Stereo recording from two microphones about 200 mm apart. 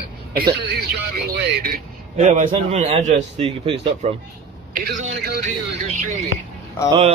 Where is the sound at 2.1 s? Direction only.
35° right (ahead or behind).